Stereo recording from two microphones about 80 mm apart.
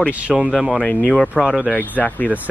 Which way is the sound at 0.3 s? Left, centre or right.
Centre.